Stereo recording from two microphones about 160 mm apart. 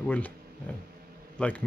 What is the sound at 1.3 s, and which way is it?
Speech, 10° left (ahead or behind).